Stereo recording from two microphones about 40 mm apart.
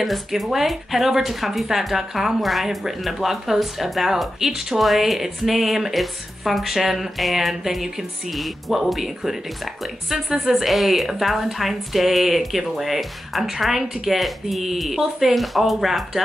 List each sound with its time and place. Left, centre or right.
0.0 s a woman's voice: centre